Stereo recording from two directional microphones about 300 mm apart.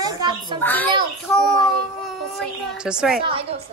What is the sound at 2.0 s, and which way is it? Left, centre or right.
Speech, centre.